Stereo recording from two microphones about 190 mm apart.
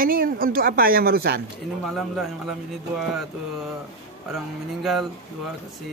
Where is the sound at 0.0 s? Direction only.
50° right (ahead or behind).